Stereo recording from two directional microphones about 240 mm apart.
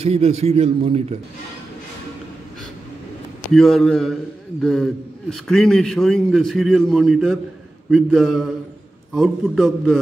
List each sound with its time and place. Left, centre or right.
0.0 s a man's voice: right
3.5 s a man's voice: centre